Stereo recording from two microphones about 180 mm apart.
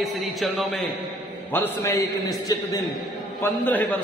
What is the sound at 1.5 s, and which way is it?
A man's voice, 15° left (ahead or behind).